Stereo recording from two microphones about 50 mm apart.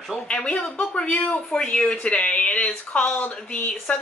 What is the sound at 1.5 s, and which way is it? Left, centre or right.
Speech, centre.